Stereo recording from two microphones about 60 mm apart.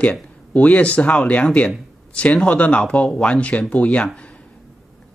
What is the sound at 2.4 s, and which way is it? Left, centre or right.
Speech, left.